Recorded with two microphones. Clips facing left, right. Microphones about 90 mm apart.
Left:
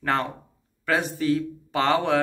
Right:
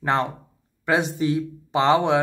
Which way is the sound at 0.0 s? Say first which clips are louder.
Right 3 dB; 20° right (ahead or behind).